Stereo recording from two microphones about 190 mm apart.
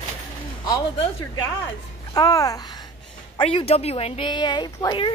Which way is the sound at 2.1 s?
20° left (ahead or behind).